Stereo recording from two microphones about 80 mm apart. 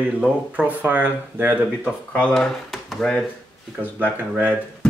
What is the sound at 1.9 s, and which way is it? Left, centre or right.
Speech, centre.